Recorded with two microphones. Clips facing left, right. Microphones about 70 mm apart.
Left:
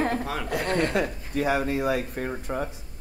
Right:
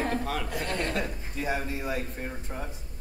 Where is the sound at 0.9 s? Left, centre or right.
Left.